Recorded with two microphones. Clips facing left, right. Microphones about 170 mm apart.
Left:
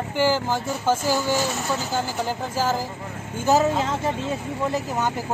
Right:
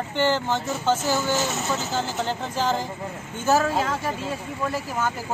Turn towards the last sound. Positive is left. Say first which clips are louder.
# left 2 dB
turn(degrees=20)  # may be behind; listen again after turning